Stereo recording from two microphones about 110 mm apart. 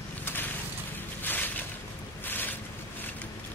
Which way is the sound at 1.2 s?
15° left (ahead or behind).